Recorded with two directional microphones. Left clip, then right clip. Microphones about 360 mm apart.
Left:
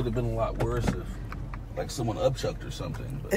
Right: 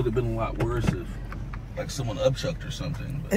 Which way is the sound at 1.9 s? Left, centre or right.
Left.